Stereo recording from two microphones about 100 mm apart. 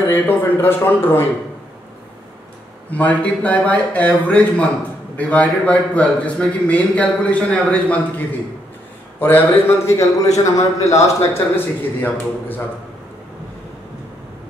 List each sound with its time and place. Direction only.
0.0 s a man's voice: 20° left (ahead or behind)
2.9 s a man's voice: 15° left (ahead or behind)
9.2 s a man's voice: 20° left (ahead or behind)